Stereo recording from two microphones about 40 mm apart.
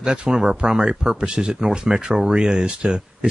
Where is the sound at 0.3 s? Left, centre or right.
Centre.